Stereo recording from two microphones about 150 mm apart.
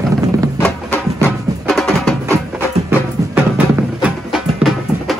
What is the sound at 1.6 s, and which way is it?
Music, centre (ahead or behind).